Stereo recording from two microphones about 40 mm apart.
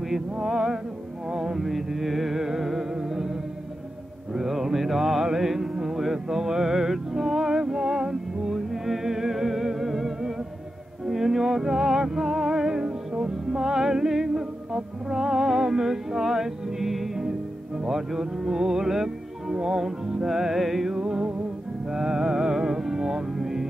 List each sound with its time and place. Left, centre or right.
0.1 s music: centre
21.0 s music: centre